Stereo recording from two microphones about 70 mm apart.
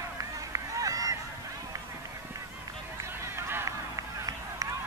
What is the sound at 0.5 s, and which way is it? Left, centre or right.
Honk, right.